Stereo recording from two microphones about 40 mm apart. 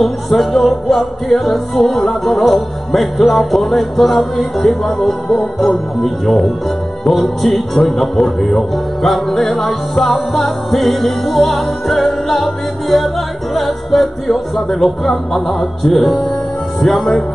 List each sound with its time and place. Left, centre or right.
0.0 s music: centre
16.8 s speech: centre